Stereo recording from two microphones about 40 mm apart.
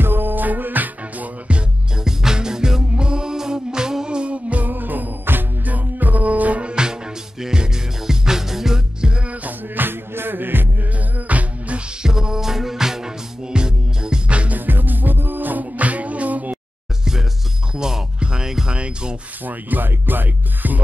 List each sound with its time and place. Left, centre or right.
0.0 s music: right
2.0 s music: centre; by 4.6 s right
4.6 s music: right
6.7 s music: right
9.3 s music: right
11.1 s music: right
12.0 s music: centre
14.7 s music: right
17.7 s music: centre
18.8 s music: right
19.4 s music: right